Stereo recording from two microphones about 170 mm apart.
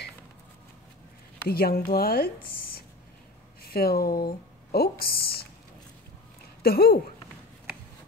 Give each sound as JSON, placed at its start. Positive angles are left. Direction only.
{"t": 1.5, "sound": "a woman's voice", "side_deg": 65}
{"t": 6.6, "sound": "a woman's voice", "side_deg": 65}